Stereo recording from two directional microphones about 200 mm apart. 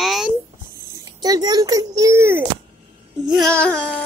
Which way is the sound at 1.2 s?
20° right (ahead or behind).